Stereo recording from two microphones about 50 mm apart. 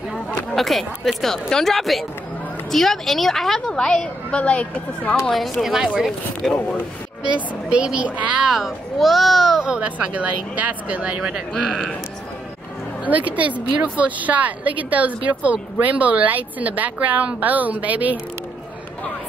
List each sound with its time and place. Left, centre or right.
0.6 s a woman's voice: centre; by 5.1 s left
5.3 s speech: centre
7.3 s a woman's voice: right
8.5 s speech: centre
9.7 s a woman's voice: right
11.2 s speech: centre
13.0 s a woman's voice: right